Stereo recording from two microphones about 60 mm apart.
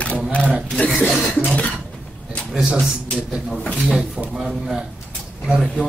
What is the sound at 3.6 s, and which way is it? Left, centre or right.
Speech, centre.